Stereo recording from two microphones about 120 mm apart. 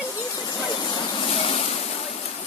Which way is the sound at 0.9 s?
35° left (ahead or behind).